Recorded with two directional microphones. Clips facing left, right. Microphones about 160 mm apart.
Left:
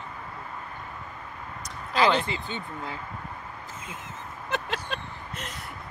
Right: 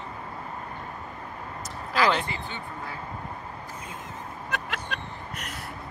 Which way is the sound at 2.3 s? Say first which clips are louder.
Left 2 dB; 20° left (ahead or behind).